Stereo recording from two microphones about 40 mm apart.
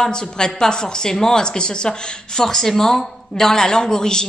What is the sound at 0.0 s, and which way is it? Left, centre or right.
A woman's voice, centre.